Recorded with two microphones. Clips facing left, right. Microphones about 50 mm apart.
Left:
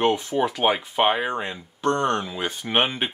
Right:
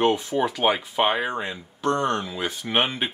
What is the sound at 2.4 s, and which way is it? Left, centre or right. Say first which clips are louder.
Speech: left 1 dB; centre.